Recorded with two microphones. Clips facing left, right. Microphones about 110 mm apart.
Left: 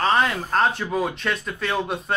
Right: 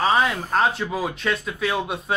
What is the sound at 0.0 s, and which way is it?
Speech, 5° right (ahead or behind).